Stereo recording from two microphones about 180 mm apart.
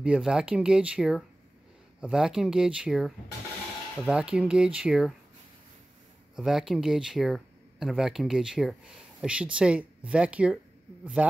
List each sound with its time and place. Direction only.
0.0 s speech: 5° right (ahead or behind)
6.3 s a man's voice: 5° right (ahead or behind)